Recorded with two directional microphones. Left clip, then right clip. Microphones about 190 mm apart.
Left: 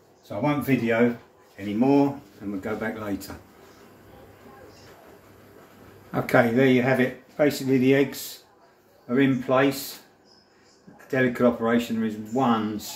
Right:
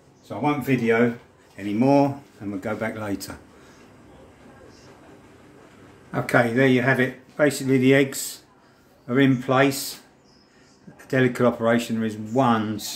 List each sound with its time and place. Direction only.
0.4 s speech: 40° right (ahead or behind)
1.8 s speech: 70° right (ahead or behind)
2.6 s speech: 45° right (ahead or behind)
6.1 s speech: 5° right (ahead or behind); by 8.1 s 25° right (ahead or behind)
9.0 s speech: 50° right (ahead or behind)
11.1 s speech: 45° right (ahead or behind)